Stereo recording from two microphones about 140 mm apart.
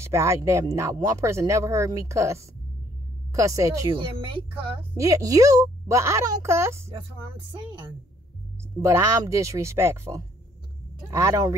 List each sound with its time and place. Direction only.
0.0 s speech: 20° right (ahead or behind)
3.9 s speech: 40° right (ahead or behind)
5.0 s speech: 25° right (ahead or behind)
8.8 s speech: 20° right (ahead or behind)